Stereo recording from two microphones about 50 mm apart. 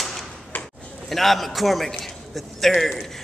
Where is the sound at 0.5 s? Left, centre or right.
Left.